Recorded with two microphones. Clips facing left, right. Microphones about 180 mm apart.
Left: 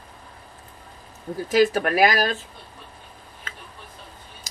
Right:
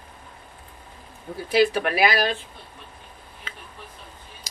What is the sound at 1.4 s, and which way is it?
A woman's voice, 45° left (ahead or behind).